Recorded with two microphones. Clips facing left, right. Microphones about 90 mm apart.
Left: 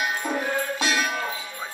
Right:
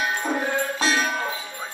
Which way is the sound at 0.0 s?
30° right (ahead or behind).